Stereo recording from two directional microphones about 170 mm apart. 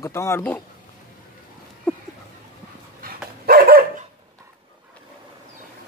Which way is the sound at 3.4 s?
60° right (ahead or behind).